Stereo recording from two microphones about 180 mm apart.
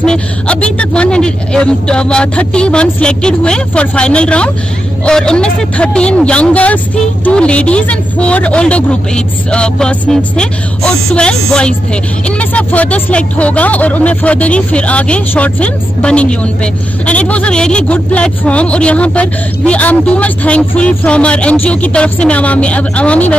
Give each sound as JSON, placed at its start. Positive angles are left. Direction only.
{"t": 0.0, "sound": "speech", "side_deg": 5}